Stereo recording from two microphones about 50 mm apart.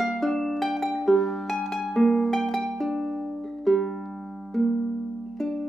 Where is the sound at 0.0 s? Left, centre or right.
Centre.